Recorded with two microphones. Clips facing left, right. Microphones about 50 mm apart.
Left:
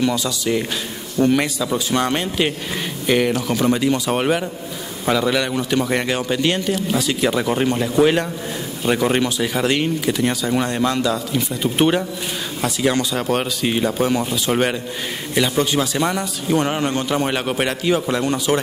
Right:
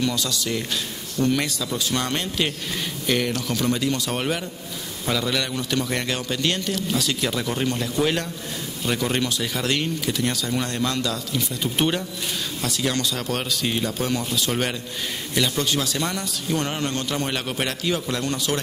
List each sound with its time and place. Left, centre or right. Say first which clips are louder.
0.0 s a man's voice: left 5 dB; centre